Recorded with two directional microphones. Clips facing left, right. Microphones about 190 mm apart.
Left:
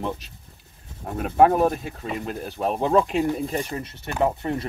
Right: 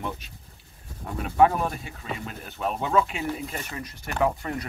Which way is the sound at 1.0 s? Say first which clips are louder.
Left 3 dB; 50° left (ahead or behind).